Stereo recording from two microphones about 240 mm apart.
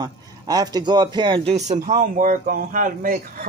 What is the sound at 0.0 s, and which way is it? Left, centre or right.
Speech, centre.